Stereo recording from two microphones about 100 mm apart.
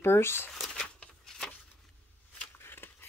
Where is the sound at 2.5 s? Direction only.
20° left (ahead or behind).